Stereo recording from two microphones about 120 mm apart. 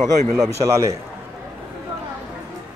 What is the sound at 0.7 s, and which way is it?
Speech, 25° right (ahead or behind).